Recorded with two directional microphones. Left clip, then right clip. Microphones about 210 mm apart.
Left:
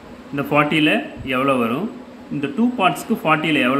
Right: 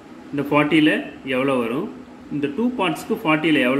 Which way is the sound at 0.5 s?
35° left (ahead or behind).